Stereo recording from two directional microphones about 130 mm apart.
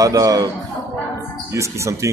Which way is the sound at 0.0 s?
30° right (ahead or behind).